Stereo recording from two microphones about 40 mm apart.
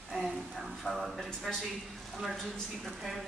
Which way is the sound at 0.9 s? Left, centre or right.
Centre.